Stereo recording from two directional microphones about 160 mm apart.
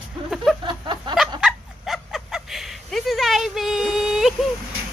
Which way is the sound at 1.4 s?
Centre (ahead or behind).